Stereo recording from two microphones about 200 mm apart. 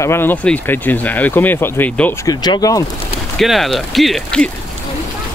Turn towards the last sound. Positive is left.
turn(degrees=0)  # may be behind; listen again after turning